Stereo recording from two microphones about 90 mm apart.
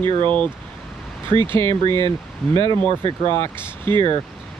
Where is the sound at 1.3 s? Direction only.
65° left (ahead or behind).